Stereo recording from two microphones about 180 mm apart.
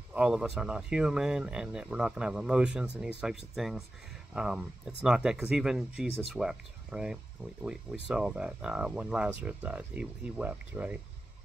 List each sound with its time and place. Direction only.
0.1 s speech: 5° right (ahead or behind)